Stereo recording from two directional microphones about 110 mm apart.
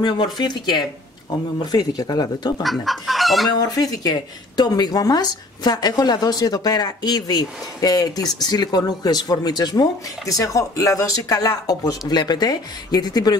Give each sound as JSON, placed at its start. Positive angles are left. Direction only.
{"t": 0.0, "sound": "a woman's voice", "side_deg": 40}
{"t": 2.6, "sound": "chicken", "side_deg": 0}
{"t": 3.4, "sound": "a woman's voice", "side_deg": 35}